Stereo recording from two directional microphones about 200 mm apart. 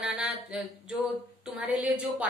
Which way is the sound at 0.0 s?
5° right (ahead or behind).